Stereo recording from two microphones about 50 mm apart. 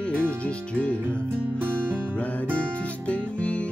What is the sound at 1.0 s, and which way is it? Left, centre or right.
Music, right.